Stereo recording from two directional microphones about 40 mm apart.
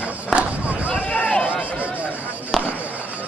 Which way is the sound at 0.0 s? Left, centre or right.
Right.